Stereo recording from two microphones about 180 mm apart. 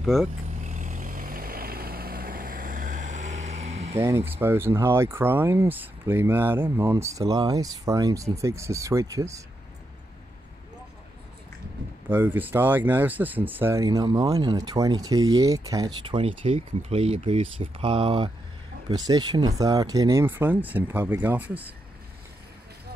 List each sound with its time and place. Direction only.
0.0 s speech: centre (ahead or behind)
0.7 s vehicle: 45° right (ahead or behind)
3.9 s speech: 15° right (ahead or behind)
12.1 s speech: 10° right (ahead or behind)
16.2 s speech: 35° right (ahead or behind); by 21.7 s 10° right (ahead or behind)